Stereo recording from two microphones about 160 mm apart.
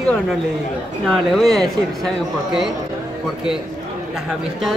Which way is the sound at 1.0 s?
Centre (ahead or behind).